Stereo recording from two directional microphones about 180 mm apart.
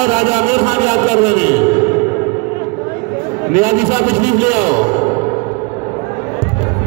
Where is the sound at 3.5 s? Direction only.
50° right (ahead or behind).